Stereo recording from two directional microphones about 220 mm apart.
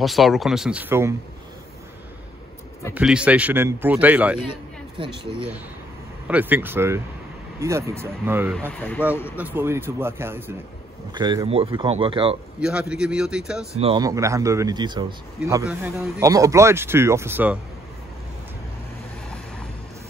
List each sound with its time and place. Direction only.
0.0 s speech: centre (ahead or behind)
2.9 s a man's voice: 5° right (ahead or behind)
4.5 s speech: 20° right (ahead or behind)
6.2 s a man's voice: 5° right (ahead or behind)
8.5 s speech: 5° left (ahead or behind)
9.4 s a man's voice: 10° right (ahead or behind)
12.5 s a man's voice: 5° right (ahead or behind)
13.7 s speech: 25° right (ahead or behind)
14.0 s a man's voice: 15° right (ahead or behind)